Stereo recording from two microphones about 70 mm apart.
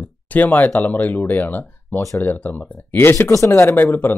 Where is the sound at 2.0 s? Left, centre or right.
Left.